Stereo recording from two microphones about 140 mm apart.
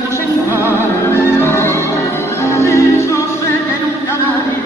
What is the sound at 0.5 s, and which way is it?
Music, 20° left (ahead or behind).